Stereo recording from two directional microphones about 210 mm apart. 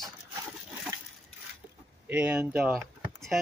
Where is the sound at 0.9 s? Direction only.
15° right (ahead or behind).